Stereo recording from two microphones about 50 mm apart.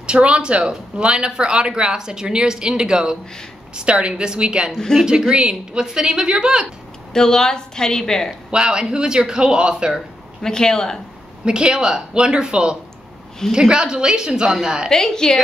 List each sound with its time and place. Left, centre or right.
0.0 s speech: right
4.7 s speech: centre
5.3 s speech: centre
7.2 s a woman's voice: centre
8.5 s speech: centre
10.4 s a woman's voice: centre
11.4 s speech: centre
14.9 s a woman's voice: centre